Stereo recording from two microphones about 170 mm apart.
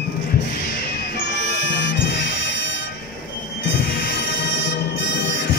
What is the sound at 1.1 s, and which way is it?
Music, 90° left.